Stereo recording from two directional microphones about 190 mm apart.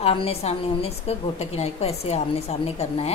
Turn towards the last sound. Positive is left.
turn(degrees=30)  # may be behind; listen again after turning